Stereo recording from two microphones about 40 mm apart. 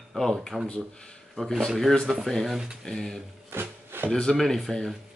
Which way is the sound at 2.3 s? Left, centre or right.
Centre.